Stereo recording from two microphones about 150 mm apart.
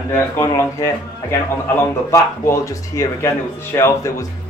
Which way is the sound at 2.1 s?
20° left (ahead or behind).